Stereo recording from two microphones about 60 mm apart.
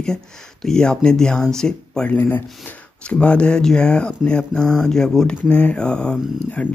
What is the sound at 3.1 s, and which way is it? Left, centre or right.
Speech, centre.